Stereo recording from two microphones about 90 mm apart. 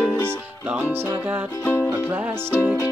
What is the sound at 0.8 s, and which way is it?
Music, 25° right (ahead or behind).